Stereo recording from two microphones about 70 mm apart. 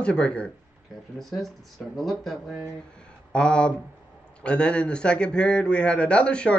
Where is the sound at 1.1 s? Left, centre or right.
Centre.